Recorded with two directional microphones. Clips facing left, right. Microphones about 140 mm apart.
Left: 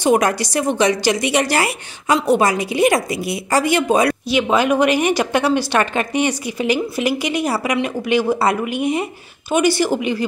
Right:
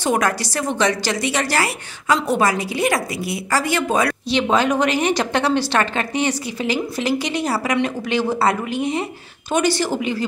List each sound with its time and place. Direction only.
0.0 s a woman's voice: 15° left (ahead or behind)